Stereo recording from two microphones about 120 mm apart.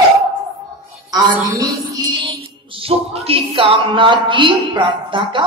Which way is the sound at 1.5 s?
35° right (ahead or behind).